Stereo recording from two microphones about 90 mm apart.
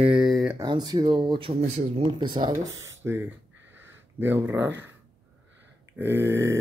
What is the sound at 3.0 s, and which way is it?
Speech, 25° right (ahead or behind).